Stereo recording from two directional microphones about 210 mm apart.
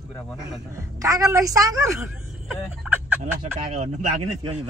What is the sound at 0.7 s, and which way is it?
Speech, 15° right (ahead or behind).